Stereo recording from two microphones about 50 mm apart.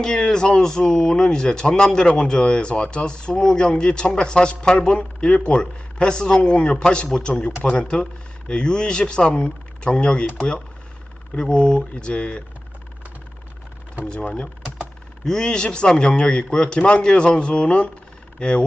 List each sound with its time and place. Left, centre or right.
0.0 s speech: centre
11.3 s speech: centre
14.0 s speech: centre